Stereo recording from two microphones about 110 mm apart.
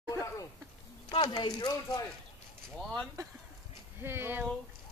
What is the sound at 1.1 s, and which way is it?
Speech, 45° left (ahead or behind).